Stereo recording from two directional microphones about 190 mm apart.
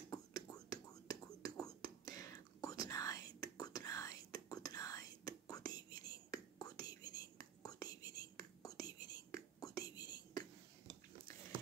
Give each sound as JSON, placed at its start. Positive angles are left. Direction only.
{"t": 0.1, "sound": "whispering", "side_deg": 20}